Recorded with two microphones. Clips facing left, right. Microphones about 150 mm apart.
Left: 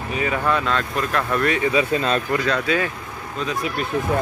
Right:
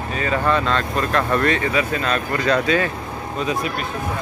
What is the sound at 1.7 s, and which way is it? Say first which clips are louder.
Speech: left 1 dB; 25° left (ahead or behind).